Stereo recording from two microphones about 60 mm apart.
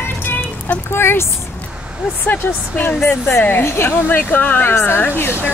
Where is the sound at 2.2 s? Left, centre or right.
Left.